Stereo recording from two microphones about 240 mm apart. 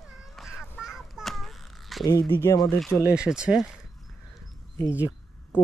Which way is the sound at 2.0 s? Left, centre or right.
Centre.